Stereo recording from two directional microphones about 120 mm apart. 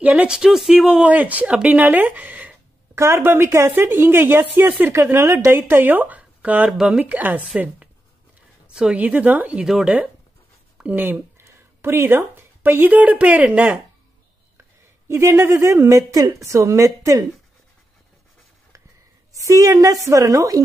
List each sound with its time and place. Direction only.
0.0 s a woman's voice: 10° right (ahead or behind)
15.0 s speech: 20° right (ahead or behind)
19.3 s speech: 25° right (ahead or behind)